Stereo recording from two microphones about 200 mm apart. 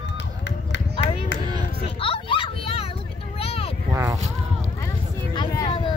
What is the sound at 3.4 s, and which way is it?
Vehicle, 30° left (ahead or behind).